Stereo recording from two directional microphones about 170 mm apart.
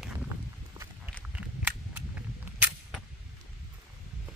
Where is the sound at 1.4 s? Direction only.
10° right (ahead or behind).